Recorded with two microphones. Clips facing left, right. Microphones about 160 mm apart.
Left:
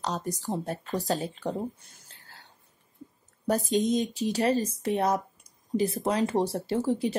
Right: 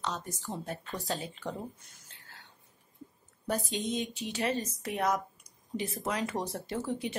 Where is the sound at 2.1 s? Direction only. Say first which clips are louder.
Left 2 dB; 35° left (ahead or behind).